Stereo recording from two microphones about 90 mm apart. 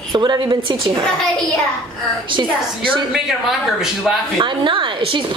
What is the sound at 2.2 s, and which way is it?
Speech, 65° right (ahead or behind).